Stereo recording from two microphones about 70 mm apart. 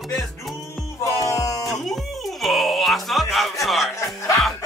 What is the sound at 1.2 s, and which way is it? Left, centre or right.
Music, left.